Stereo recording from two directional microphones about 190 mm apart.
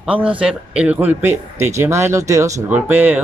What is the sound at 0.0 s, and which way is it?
Speech, 5° right (ahead or behind).